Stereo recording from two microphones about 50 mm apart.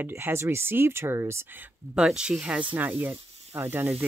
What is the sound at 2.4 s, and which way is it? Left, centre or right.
Speech, right.